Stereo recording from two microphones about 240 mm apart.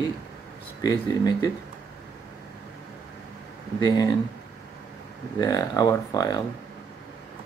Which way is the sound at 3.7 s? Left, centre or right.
Centre.